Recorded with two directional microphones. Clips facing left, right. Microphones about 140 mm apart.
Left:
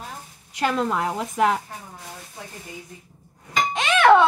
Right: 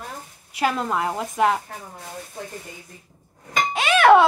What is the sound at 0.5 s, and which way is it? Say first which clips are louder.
A woman's voice: even; 5° right (ahead or behind).